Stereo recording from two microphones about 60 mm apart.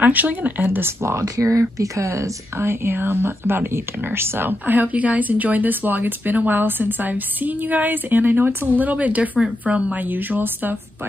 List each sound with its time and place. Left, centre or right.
0.0 s speech: right
0.7 s speech: right
1.3 s speech: right
2.6 s speech: right
8.8 s speech: right
10.0 s speech: right